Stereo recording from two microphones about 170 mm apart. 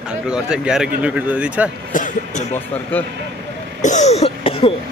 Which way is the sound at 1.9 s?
50° left (ahead or behind).